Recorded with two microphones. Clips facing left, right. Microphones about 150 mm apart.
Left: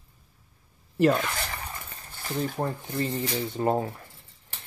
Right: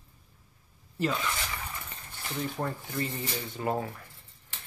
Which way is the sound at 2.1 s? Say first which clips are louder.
Left 5 dB; 40° left (ahead or behind).